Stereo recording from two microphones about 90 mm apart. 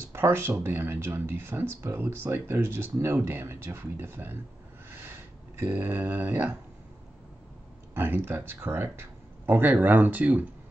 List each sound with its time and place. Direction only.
0.1 s speech: 25° right (ahead or behind)
4.9 s a sound: 25° right (ahead or behind)
7.9 s speech: 25° right (ahead or behind)